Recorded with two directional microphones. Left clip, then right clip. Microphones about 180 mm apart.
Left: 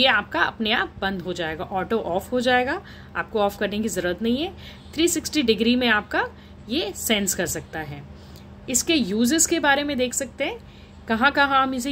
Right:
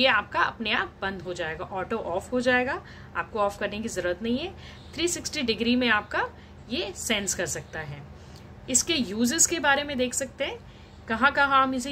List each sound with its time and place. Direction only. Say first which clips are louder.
0.0 s a woman's voice: left 3 dB; 50° left (ahead or behind)